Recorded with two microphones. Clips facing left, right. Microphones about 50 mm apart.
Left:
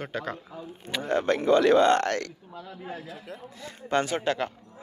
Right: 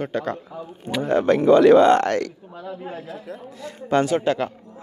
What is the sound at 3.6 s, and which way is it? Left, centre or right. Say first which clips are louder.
Speech: right 6 dB; right.